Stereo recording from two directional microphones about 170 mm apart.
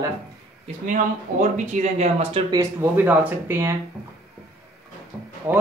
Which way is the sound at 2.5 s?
15° right (ahead or behind).